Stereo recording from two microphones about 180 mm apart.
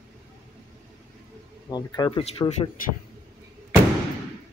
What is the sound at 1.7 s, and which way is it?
Speech, 25° left (ahead or behind).